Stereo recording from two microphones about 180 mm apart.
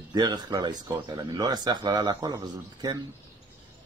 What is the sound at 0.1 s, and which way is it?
Speech, 25° right (ahead or behind).